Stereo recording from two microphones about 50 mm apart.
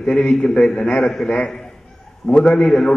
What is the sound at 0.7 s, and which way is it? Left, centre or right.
Speech, left.